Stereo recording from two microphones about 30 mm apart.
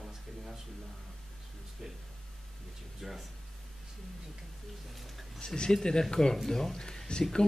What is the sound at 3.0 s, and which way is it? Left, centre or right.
Speech, centre.